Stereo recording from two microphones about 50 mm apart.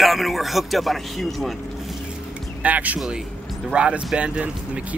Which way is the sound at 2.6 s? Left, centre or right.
Right.